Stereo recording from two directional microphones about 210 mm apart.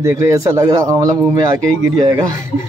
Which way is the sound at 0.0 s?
15° right (ahead or behind).